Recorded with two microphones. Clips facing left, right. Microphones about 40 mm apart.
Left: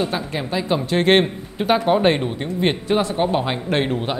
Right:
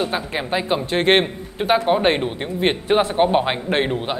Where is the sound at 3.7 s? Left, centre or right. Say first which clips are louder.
Even; centre.